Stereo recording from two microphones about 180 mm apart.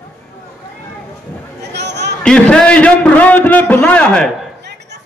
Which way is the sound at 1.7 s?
70° right (ahead or behind).